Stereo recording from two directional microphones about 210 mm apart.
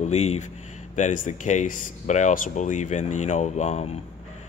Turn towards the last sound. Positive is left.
turn(degrees=35)  # may be behind; listen again after turning